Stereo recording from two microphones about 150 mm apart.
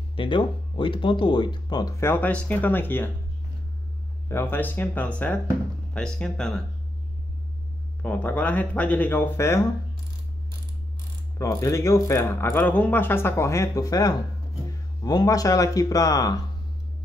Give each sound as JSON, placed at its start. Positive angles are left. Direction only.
{"t": 0.1, "sound": "speech", "side_deg": 35}
{"t": 4.3, "sound": "speech", "side_deg": 15}
{"t": 8.0, "sound": "speech", "side_deg": 10}
{"t": 11.3, "sound": "speech", "side_deg": 20}